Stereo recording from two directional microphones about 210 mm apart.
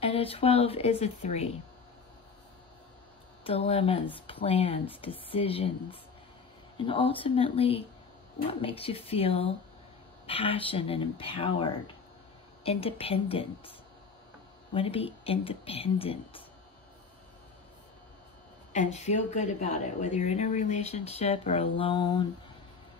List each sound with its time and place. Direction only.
0.0 s speech: 25° left (ahead or behind)
3.4 s speech: 30° left (ahead or behind)
14.7 s speech: 25° left (ahead or behind)
18.7 s speech: 35° left (ahead or behind)